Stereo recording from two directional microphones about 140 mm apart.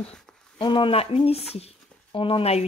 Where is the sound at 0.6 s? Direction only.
35° left (ahead or behind).